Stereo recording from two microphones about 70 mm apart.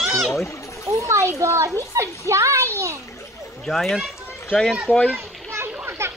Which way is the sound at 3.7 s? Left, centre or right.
Centre.